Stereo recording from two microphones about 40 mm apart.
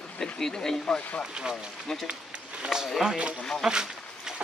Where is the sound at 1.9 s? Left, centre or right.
Centre.